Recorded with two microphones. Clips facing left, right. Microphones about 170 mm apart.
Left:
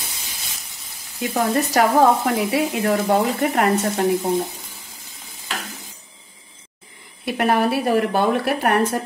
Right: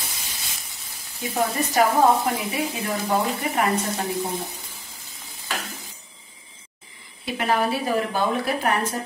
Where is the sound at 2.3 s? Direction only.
80° left.